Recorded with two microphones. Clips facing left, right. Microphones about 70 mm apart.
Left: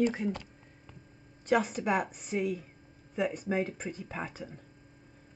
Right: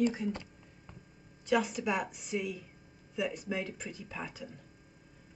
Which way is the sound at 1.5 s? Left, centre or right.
Left.